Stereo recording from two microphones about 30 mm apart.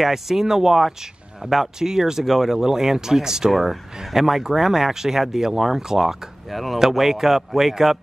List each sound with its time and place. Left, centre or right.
0.0 s speech: centre
1.8 s speech: centre
3.4 s speech: centre
6.5 s speech: centre